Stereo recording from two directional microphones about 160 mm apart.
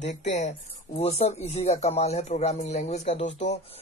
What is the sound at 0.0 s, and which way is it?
Speech, 45° left (ahead or behind).